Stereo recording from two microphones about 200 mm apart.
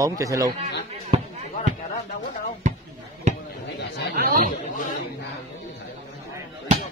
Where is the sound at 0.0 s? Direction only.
15° right (ahead or behind).